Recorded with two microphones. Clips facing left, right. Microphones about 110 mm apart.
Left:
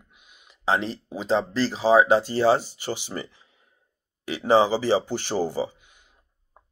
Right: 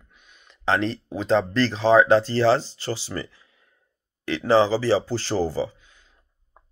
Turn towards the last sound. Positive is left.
turn(degrees=15)  # may be behind; listen again after turning